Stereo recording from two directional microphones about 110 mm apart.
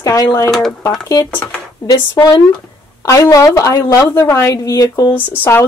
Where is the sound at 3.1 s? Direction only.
35° left (ahead or behind).